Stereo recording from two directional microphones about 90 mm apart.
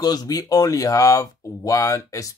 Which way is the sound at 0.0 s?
45° left (ahead or behind).